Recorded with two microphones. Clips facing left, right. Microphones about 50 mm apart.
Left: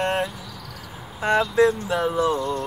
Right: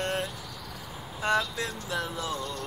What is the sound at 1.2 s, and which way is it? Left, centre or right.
Vehicle, left.